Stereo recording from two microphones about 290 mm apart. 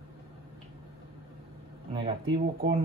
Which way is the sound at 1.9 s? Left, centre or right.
Centre.